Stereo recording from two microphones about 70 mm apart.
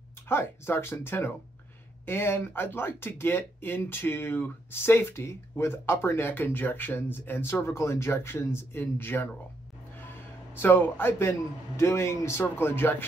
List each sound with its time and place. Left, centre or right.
0.3 s speech: left
7.6 s speech: left
10.5 s speech: left